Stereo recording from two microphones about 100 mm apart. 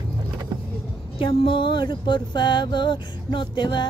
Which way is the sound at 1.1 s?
65° left (ahead or behind).